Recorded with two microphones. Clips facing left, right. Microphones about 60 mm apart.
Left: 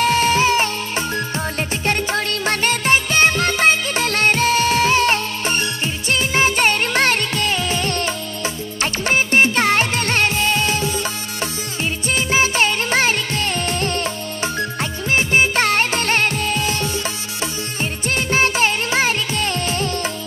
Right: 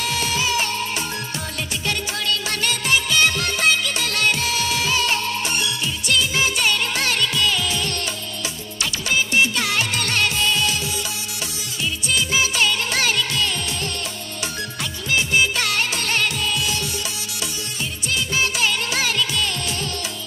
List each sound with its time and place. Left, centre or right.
0.0 s music: left
18.0 s music: left